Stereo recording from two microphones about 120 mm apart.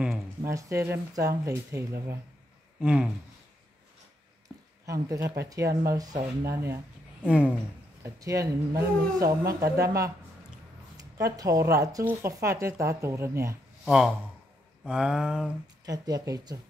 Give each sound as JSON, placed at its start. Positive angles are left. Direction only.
{"t": 0.4, "sound": "speech", "side_deg": -25}
{"t": 2.8, "sound": "a sound", "side_deg": -10}
{"t": 4.8, "sound": "speech", "side_deg": -25}
{"t": 7.2, "sound": "a sound", "side_deg": -10}
{"t": 8.0, "sound": "speech", "side_deg": -25}
{"t": 11.1, "sound": "speech", "side_deg": -30}
{"t": 13.8, "sound": "speech", "side_deg": -5}
{"t": 14.9, "sound": "a sound", "side_deg": -5}
{"t": 15.8, "sound": "speech", "side_deg": -30}